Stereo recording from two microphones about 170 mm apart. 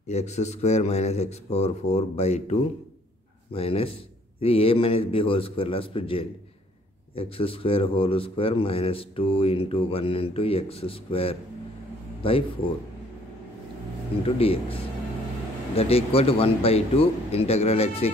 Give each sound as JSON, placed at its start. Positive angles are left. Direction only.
{"t": 0.1, "sound": "speech", "side_deg": 40}
{"t": 14.2, "sound": "speech", "side_deg": 35}